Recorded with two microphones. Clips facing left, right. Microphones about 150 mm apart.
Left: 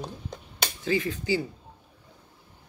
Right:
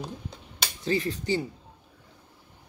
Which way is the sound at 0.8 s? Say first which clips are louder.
Even; 35° right (ahead or behind).